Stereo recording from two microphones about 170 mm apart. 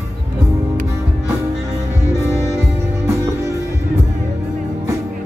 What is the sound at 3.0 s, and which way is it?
Music, 15° right (ahead or behind).